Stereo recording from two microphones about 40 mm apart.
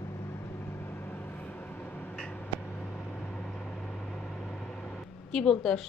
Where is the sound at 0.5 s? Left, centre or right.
Left.